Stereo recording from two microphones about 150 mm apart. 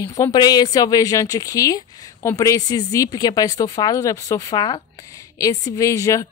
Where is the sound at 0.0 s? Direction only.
25° left (ahead or behind).